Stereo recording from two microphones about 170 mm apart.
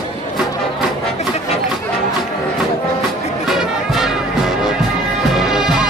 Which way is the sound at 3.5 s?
Centre (ahead or behind).